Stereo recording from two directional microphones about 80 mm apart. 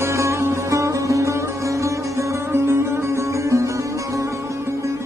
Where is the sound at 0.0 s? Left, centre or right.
Right.